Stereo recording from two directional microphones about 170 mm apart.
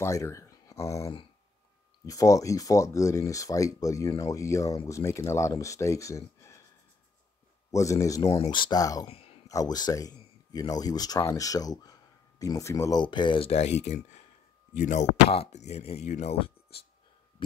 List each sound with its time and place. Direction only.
0.0 s speech: 20° left (ahead or behind)
7.7 s speech: 20° left (ahead or behind)
8.2 s speech: 35° left (ahead or behind)
9.0 s a sound: 35° left (ahead or behind)
9.5 s speech: 20° left (ahead or behind)